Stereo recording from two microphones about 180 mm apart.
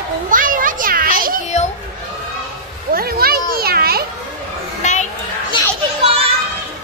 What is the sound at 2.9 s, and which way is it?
Children playing, 55° right (ahead or behind).